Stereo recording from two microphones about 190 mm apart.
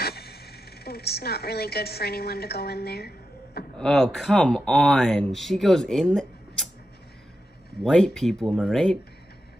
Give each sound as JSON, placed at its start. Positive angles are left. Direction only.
{"t": 0.0, "sound": "speech", "side_deg": 55}
{"t": 3.7, "sound": "speech", "side_deg": 5}
{"t": 7.8, "sound": "speech", "side_deg": 0}